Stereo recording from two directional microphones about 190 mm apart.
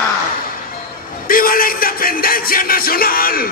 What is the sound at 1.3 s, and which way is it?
Music, 50° left (ahead or behind).